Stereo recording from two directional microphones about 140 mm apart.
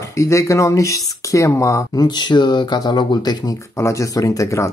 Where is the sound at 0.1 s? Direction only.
20° left (ahead or behind).